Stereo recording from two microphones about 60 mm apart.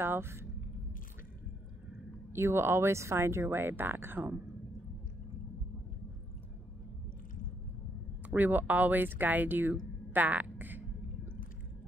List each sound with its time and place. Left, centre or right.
0.0 s speech: right
2.3 s speech: right
8.3 s speech: right
10.1 s a sound: right